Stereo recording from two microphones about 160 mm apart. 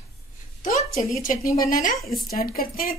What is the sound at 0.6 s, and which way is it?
A woman's voice, 55° left (ahead or behind).